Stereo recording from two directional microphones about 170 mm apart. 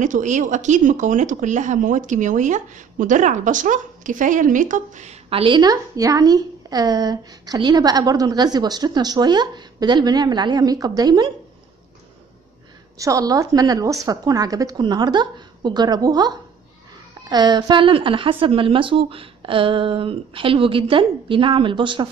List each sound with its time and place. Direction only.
0.0 s speech: 45° right (ahead or behind); by 11.3 s 25° right (ahead or behind)
12.9 s a woman's voice: 20° right (ahead or behind)